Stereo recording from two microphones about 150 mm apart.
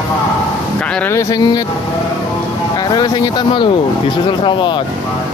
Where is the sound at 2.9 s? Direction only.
30° left (ahead or behind).